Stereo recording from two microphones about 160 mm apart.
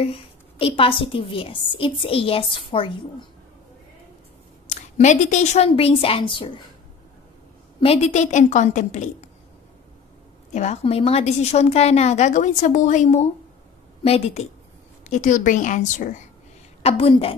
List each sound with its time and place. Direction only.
0.0 s a woman's voice: 35° left (ahead or behind)
4.6 s a woman's voice: 45° left (ahead or behind); by 6.6 s 30° left (ahead or behind)
7.8 s a woman's voice: 40° left (ahead or behind)
10.5 s a woman's voice: 45° left (ahead or behind)
16.8 s a woman's voice: 35° left (ahead or behind)